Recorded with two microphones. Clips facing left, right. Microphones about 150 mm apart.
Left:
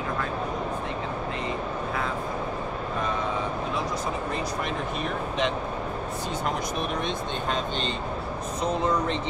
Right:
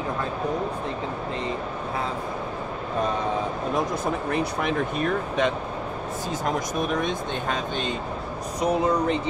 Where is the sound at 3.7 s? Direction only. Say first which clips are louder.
Right 4 dB; 60° right (ahead or behind).